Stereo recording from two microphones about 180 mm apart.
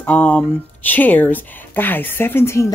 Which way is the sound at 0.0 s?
10° left (ahead or behind).